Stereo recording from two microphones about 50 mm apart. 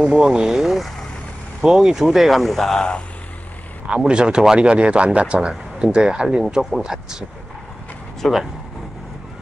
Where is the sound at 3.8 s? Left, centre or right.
Right.